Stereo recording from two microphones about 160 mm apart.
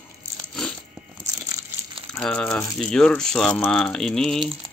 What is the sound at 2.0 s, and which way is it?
Speech, 5° left (ahead or behind).